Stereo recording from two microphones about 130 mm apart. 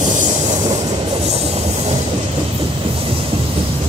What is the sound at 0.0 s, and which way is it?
Train, 70° right (ahead or behind).